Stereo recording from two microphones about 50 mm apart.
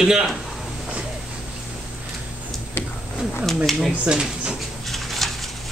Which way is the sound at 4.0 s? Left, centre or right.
Centre.